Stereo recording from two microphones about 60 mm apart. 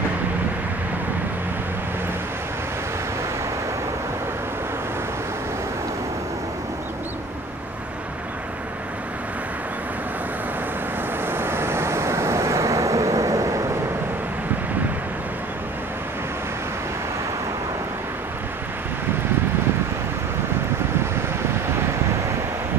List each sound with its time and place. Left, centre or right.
11.2 s waves: right